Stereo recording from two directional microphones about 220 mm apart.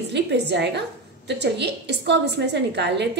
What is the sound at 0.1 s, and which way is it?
A woman's voice, 50° right (ahead or behind).